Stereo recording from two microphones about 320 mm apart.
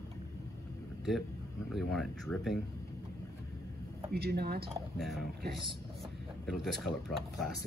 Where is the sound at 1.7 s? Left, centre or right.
Centre.